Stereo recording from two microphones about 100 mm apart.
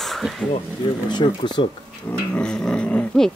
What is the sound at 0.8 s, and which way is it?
Speech, 50° left (ahead or behind).